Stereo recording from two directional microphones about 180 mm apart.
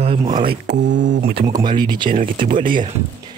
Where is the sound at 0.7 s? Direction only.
85° right.